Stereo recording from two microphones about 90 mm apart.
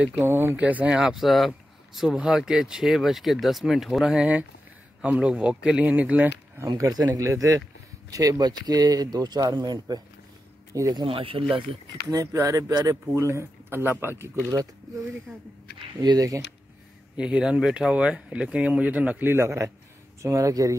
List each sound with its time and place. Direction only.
0.2 s speech: 25° right (ahead or behind)
0.6 s speech: 15° right (ahead or behind)
0.9 s speech: 5° right (ahead or behind)
6.8 s speech: 40° right (ahead or behind)
10.7 s speech: 35° right (ahead or behind)
11.0 s speech: 75° right (ahead or behind)
12.1 s speech: 35° right (ahead or behind)
16.0 s speech: 50° right (ahead or behind)
17.2 s speech: 10° right (ahead or behind); by 20.7 s 35° right (ahead or behind)